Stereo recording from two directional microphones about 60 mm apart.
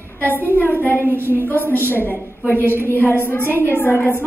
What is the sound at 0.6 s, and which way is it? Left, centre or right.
Speech, left.